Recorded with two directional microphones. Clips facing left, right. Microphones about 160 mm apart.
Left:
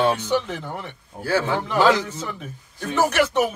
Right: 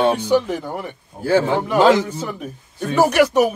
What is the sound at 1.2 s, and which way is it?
Speech, 25° right (ahead or behind).